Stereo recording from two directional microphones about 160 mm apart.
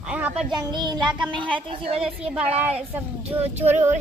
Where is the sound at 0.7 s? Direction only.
30° right (ahead or behind).